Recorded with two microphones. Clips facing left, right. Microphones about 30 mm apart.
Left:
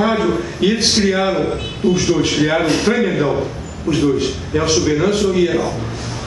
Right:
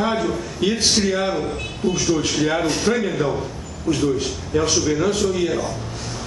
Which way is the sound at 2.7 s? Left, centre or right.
Left.